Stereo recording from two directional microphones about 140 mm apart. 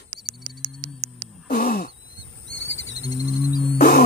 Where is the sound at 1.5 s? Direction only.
90° left.